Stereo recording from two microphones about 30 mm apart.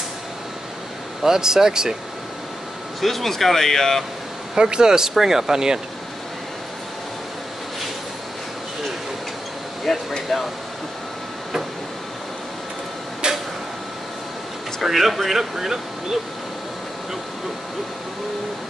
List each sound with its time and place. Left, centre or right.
1.2 s speech: centre
3.0 s speech: centre
4.6 s speech: right
5.1 s speech: centre
9.9 s speech: centre
13.2 s a sound: right
14.8 s speech: centre